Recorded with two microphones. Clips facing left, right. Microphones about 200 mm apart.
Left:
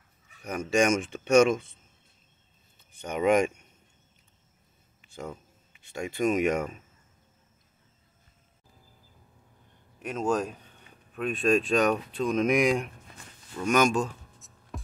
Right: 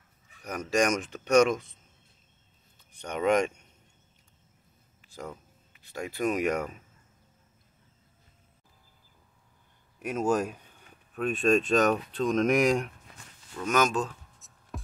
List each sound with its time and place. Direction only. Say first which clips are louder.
0.4 s speech: left 2 dB; centre (ahead or behind)
2.9 s speech: left 2 dB; 5° left (ahead or behind)
5.0 s speech: left 2 dB; centre (ahead or behind)
9.9 s speech: right 1 dB; 5° right (ahead or behind); by 14.1 s 10° left (ahead or behind)
14.4 s music: left 4 dB; centre (ahead or behind)